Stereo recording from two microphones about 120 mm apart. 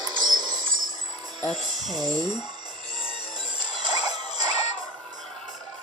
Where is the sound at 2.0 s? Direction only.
35° right (ahead or behind).